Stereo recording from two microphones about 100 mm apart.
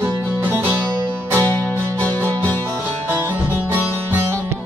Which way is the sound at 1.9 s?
15° left (ahead or behind).